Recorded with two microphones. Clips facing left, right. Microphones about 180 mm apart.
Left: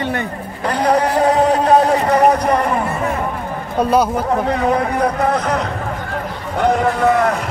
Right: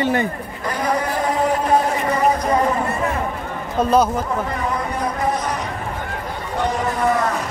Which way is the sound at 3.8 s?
10° left (ahead or behind).